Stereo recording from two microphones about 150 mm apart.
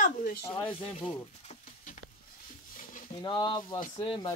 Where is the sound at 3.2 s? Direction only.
30° left (ahead or behind).